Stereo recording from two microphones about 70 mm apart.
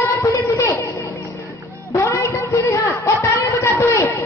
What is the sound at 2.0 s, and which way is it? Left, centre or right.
Speech, left.